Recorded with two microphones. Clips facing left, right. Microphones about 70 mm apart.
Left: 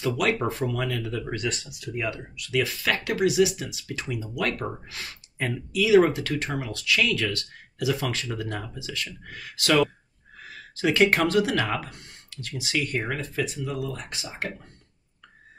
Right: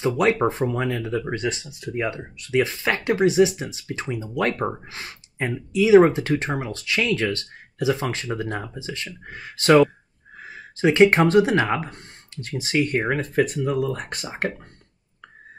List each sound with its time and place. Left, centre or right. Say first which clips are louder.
0.0 s speech: right 5 dB; right